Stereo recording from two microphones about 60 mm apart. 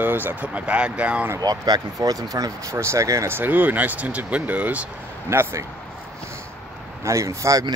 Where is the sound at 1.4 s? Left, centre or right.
Right.